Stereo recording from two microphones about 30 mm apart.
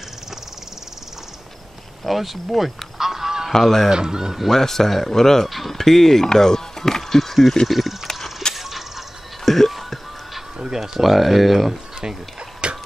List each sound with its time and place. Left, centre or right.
2.0 s speech: centre
3.0 s goose: centre
3.5 s speech: centre
3.9 s speech: right
4.5 s speech: centre
5.5 s speech: centre
6.2 s chopping: centre
7.0 s speech: centre
8.1 s mechanisms: centre
8.5 s a sound: centre
9.4 s music: centre
10.6 s a sound: centre
11.0 s speech: centre
12.6 s a sound: right